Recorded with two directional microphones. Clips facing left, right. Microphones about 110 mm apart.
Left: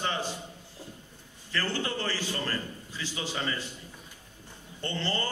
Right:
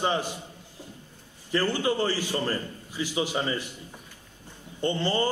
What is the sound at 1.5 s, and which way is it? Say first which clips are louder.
A man's voice: right 6 dB; 15° right (ahead or behind).